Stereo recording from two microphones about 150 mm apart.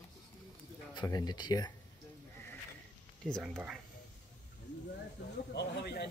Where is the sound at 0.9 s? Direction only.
25° left (ahead or behind).